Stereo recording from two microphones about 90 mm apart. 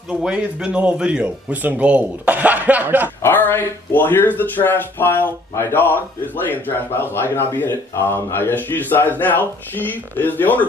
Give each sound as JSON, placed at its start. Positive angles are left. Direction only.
{"t": 0.2, "sound": "speech", "side_deg": -10}
{"t": 3.2, "sound": "speech", "side_deg": 20}